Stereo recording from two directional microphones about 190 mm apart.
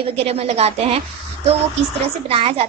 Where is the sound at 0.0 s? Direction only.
30° right (ahead or behind).